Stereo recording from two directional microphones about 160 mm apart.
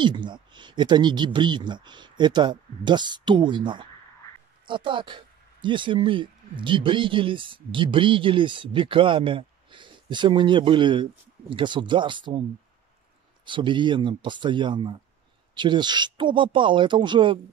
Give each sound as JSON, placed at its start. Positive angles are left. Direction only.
{"t": 0.0, "sound": "speech", "side_deg": -30}
{"t": 13.5, "sound": "speech", "side_deg": -30}